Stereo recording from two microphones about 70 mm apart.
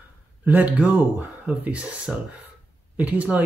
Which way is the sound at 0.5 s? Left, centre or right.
Right.